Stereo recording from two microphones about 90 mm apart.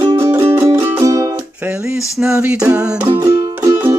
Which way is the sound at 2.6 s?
40° right (ahead or behind).